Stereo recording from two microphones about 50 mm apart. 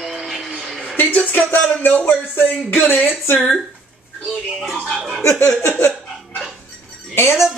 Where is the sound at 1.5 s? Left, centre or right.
Left.